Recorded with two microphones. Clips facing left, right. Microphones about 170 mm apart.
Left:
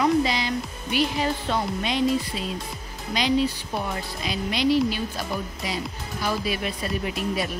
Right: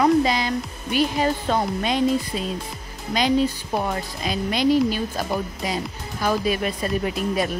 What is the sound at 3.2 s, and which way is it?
Speech, 45° right (ahead or behind).